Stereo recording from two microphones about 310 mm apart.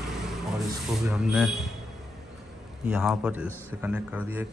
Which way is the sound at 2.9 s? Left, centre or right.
Centre.